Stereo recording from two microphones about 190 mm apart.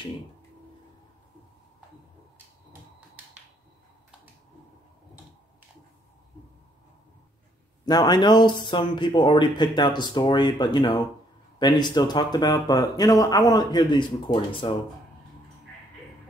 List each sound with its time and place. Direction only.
7.8 s speech: 20° left (ahead or behind)